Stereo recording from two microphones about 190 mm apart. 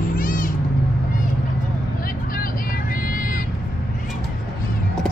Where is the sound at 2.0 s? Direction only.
50° left (ahead or behind).